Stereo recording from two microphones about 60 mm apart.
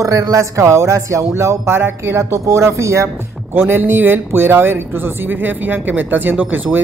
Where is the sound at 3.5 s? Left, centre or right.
Right.